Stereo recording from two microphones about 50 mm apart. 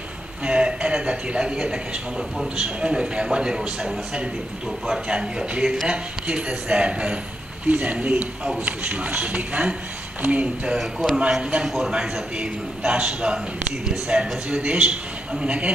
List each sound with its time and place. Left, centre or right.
0.5 s a man's voice: centre
10.8 s a man's voice: centre; by 15.7 s right